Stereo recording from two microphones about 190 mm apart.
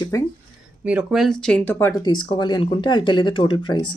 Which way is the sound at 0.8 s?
5° right (ahead or behind).